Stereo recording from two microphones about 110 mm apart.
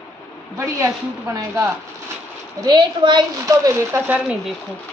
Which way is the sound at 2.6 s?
45° right (ahead or behind).